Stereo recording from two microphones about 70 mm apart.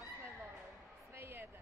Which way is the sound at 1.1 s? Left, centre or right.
Right.